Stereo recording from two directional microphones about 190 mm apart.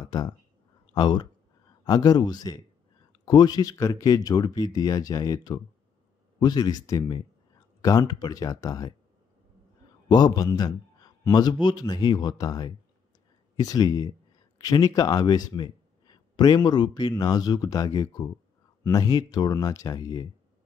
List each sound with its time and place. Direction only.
0.0 s a man's voice: 20° left (ahead or behind)
10.0 s a man's voice: 20° left (ahead or behind)